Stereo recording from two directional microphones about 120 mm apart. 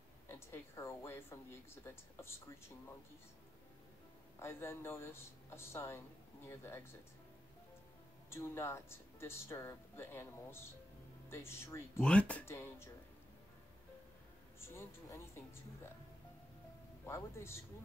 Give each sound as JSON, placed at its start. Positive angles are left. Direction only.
{"t": 0.3, "sound": "speech", "side_deg": 20}
{"t": 4.4, "sound": "speech", "side_deg": 20}
{"t": 8.3, "sound": "speech", "side_deg": 20}
{"t": 12.0, "sound": "speech", "side_deg": 10}
{"t": 14.6, "sound": "speech", "side_deg": 20}
{"t": 17.0, "sound": "speech", "side_deg": 20}